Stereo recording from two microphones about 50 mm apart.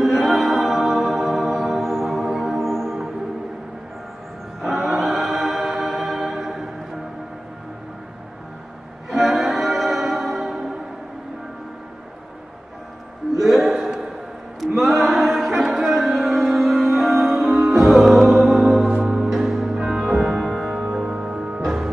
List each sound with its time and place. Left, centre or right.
0.0 s music: centre
4.6 s music: centre
9.1 s music: centre
13.4 s a sound: centre
15.0 s music: centre
18.9 s music: centre
19.2 s music: centre
21.1 s music: centre